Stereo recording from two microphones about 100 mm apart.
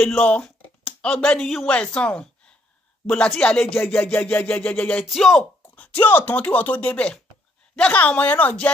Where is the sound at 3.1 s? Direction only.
10° left (ahead or behind).